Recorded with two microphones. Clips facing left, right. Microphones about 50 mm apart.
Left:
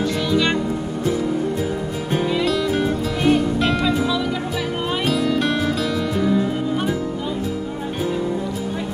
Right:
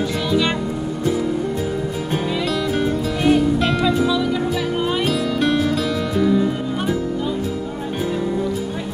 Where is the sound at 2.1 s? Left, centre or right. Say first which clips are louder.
Left 3 dB; centre.